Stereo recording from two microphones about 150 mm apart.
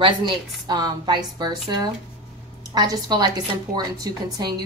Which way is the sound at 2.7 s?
25° right (ahead or behind).